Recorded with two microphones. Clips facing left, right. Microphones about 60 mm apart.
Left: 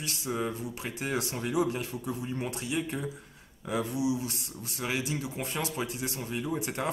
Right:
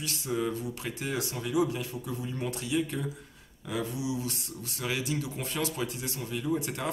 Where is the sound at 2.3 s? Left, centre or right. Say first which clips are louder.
Right 5 dB; left.